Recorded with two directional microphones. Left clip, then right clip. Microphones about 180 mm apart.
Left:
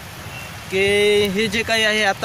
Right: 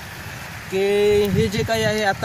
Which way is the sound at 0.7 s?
15° right (ahead or behind).